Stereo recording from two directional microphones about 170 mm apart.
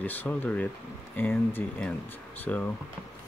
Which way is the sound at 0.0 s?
10° left (ahead or behind).